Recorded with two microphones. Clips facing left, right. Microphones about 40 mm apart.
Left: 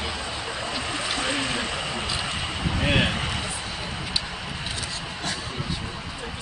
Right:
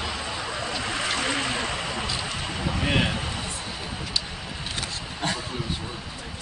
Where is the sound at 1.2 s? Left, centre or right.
Left.